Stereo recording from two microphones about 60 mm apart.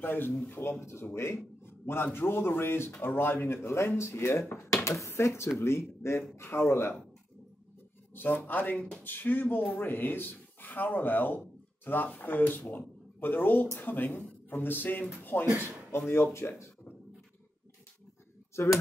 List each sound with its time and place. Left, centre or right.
0.0 s speech: left
1.7 s a sound: left
2.1 s speech: left
8.1 s speech: left
18.6 s speech: left